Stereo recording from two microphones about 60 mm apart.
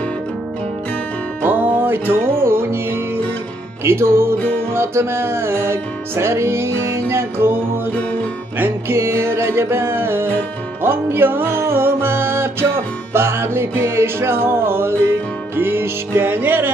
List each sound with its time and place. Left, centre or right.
1.4 s music: right